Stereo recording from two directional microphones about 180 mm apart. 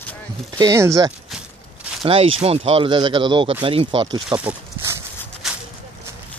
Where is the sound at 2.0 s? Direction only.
30° right (ahead or behind).